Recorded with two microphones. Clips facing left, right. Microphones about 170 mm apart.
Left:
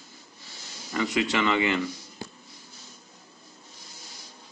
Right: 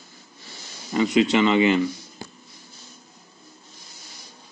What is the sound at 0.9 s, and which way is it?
Speech, 20° right (ahead or behind).